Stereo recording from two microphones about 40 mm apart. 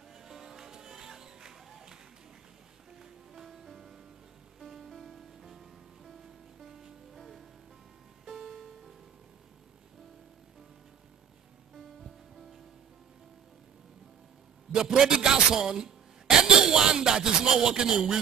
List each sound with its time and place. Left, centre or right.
0.1 s music: centre
3.0 s music: centre
7.2 s music: centre
14.7 s a man's voice: centre